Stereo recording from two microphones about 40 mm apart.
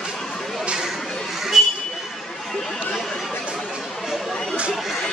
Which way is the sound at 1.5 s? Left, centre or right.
Centre.